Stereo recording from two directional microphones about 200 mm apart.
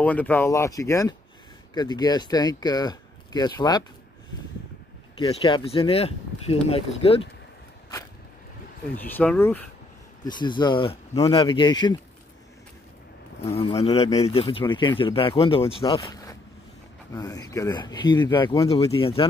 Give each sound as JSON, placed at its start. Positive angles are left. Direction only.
{"t": 0.0, "sound": "speech", "side_deg": 5}
{"t": 5.1, "sound": "speech", "side_deg": 25}
{"t": 8.9, "sound": "speech", "side_deg": 10}
{"t": 10.2, "sound": "speech", "side_deg": 20}
{"t": 13.4, "sound": "speech", "side_deg": 30}